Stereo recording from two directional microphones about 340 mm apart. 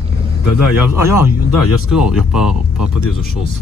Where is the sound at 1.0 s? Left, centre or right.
Centre.